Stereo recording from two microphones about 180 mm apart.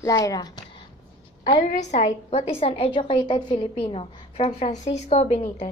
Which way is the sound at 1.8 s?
40° left (ahead or behind).